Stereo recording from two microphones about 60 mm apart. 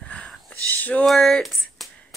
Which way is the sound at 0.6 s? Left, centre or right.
Left.